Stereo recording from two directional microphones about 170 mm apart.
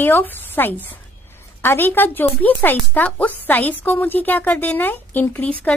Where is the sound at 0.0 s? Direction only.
10° left (ahead or behind).